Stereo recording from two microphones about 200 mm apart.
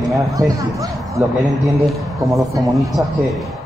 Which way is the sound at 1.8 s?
Centre (ahead or behind).